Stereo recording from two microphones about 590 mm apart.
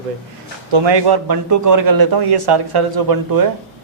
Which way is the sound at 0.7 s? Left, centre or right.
Right.